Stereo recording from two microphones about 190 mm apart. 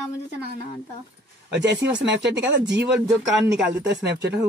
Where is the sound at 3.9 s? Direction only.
60° right (ahead or behind).